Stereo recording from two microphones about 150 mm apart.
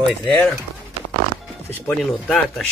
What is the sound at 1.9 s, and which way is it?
Speech, 5° left (ahead or behind).